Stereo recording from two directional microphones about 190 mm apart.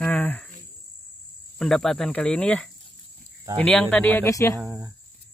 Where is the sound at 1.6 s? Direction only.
Centre (ahead or behind).